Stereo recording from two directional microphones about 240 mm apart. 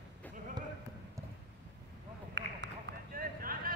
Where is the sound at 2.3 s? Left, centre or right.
Right.